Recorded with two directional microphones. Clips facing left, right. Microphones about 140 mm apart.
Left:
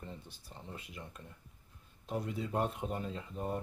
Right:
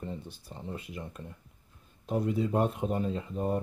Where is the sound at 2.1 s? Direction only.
45° right (ahead or behind).